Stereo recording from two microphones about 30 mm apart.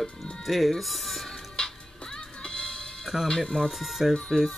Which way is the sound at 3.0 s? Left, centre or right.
Centre.